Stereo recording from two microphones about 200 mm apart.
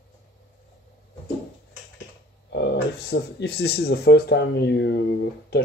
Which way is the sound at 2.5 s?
60° left (ahead or behind).